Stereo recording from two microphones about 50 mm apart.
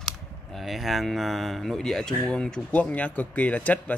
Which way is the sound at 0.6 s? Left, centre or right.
Centre.